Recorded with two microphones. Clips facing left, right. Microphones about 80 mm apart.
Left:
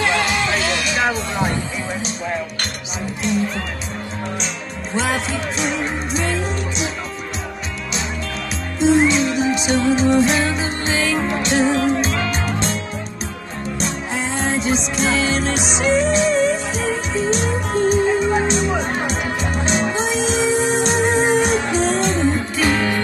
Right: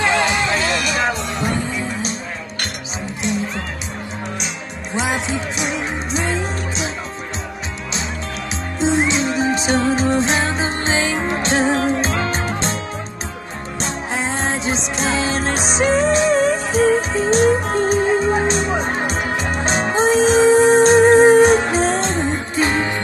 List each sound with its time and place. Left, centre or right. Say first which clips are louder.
0.0 s music: right 1 dB; right
4.9 s speech: even; centre
6.1 s music: right 1 dB; right
8.7 s music: left 3 dB; right
13.7 s music: right 1 dB; right